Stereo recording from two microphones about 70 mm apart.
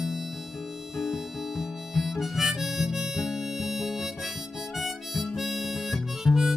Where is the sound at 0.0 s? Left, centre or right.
Centre.